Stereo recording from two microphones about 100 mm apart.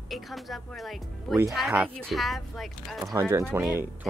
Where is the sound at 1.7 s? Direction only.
15° right (ahead or behind).